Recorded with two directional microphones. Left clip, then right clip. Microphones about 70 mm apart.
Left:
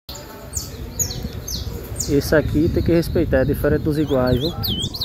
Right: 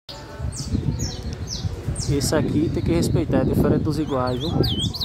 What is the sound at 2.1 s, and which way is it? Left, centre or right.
Speech, left.